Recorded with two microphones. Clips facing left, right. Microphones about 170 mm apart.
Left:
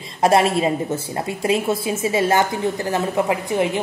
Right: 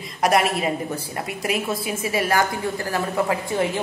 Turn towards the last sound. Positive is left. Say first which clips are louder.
# left 3 dB
turn(degrees=15)  # may be behind; listen again after turning